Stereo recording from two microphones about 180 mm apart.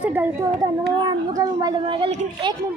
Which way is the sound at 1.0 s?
25° right (ahead or behind).